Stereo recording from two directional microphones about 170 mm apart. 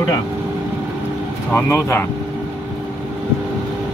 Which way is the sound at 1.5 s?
15° left (ahead or behind).